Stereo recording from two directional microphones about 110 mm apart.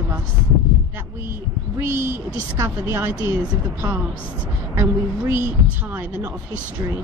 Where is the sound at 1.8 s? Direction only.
20° right (ahead or behind).